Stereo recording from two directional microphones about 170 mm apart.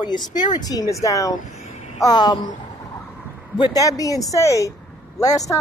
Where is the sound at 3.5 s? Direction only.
25° left (ahead or behind).